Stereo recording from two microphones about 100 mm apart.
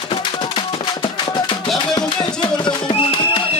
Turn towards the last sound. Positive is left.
turn(degrees=60)  # may be behind; listen again after turning